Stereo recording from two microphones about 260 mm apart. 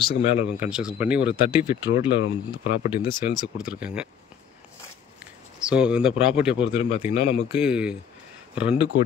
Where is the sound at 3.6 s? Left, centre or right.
Centre.